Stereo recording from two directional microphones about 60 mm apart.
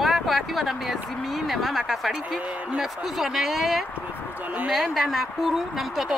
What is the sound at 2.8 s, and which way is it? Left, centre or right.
A woman's voice, centre.